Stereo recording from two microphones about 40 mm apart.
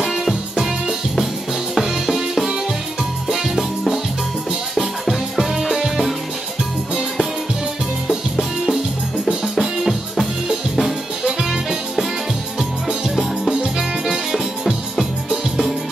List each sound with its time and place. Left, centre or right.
0.0 s music: centre
4.7 s music: centre
8.1 s music: centre
12.5 s music: centre
14.7 s music: centre